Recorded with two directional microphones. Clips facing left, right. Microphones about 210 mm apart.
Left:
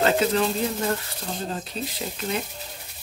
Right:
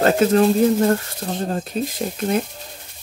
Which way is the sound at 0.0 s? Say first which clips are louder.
Right 6 dB; 50° right (ahead or behind).